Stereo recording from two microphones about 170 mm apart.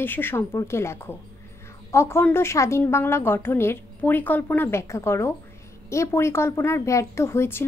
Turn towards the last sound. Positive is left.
turn(degrees=15)  # may be behind; listen again after turning